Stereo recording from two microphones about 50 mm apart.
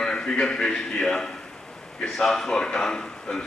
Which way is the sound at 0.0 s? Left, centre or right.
Centre.